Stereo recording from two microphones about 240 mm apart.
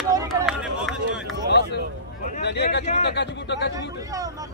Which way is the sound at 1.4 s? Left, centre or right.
Left.